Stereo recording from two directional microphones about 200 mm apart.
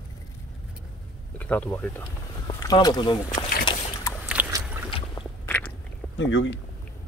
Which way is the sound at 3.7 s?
25° left (ahead or behind).